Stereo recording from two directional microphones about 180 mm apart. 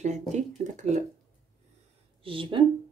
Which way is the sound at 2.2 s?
30° right (ahead or behind).